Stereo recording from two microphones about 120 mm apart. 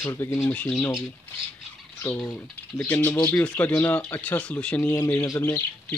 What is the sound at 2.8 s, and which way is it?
Speech, 15° left (ahead or behind).